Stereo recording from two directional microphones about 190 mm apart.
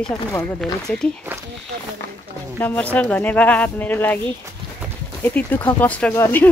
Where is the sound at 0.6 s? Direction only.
5° left (ahead or behind).